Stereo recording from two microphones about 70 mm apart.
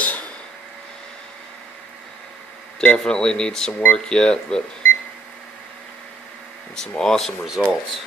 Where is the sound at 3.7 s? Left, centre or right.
Left.